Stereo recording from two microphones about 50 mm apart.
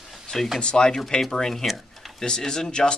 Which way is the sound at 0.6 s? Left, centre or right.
Centre.